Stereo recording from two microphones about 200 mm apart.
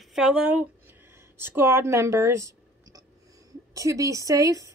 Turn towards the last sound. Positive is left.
turn(degrees=-15)  # may be behind; listen again after turning